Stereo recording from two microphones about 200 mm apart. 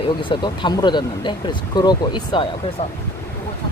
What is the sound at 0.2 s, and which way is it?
Speech, 25° left (ahead or behind).